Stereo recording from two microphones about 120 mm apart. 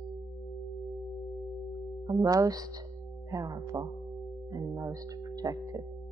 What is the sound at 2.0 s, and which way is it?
Speech, 30° right (ahead or behind).